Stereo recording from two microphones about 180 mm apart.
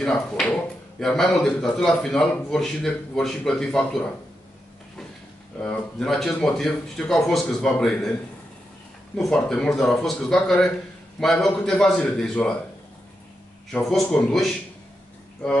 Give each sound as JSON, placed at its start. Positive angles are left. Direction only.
{"t": 0.0, "sound": "speech", "side_deg": 5}
{"t": 5.6, "sound": "speech", "side_deg": 5}
{"t": 9.1, "sound": "speech", "side_deg": 5}
{"t": 13.7, "sound": "speech", "side_deg": 0}